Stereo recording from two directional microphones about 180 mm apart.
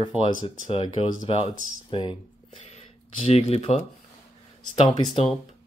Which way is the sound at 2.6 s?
35° left (ahead or behind).